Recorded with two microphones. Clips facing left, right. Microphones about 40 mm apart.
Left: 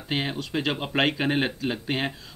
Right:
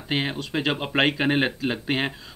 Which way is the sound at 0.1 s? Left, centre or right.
Centre.